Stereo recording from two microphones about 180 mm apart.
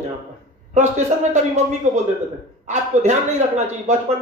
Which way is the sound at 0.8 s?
40° right (ahead or behind).